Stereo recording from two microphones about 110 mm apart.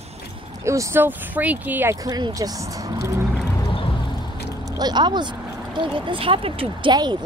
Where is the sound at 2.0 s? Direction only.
35° right (ahead or behind).